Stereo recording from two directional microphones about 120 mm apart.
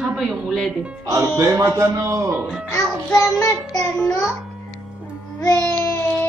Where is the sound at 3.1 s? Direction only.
25° left (ahead or behind).